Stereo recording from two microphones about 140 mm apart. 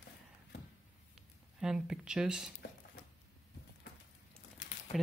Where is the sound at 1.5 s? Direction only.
5° right (ahead or behind).